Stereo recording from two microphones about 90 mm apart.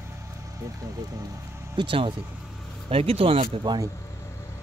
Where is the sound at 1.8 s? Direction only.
75° right (ahead or behind).